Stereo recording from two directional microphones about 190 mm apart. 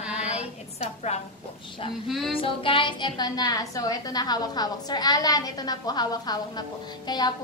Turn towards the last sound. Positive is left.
turn(degrees=20)  # may be behind; listen again after turning